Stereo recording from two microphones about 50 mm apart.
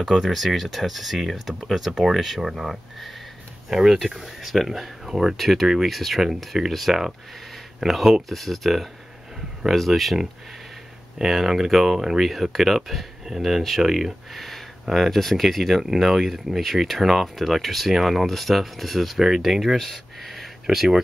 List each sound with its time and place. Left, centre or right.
0.0 s speech: centre
20.7 s speech: centre